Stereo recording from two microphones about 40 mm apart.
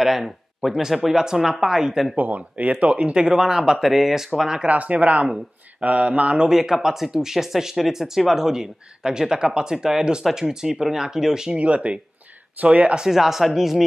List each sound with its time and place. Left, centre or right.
0.0 s speech: centre
2.1 s speech: right
3.3 s speech: centre
4.6 s speech: right
6.5 s speech: centre
11.5 s speech: right
13.0 s speech: centre